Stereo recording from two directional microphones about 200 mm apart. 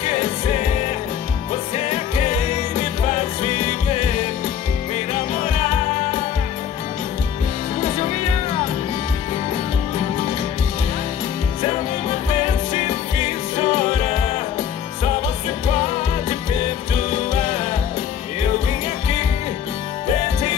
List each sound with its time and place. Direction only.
0.0 s music: 35° left (ahead or behind)
2.7 s music: 35° left (ahead or behind)
4.9 s music: 35° left (ahead or behind)
7.8 s music: 35° left (ahead or behind)
12.3 s music: 35° left (ahead or behind)
15.7 s music: 35° left (ahead or behind)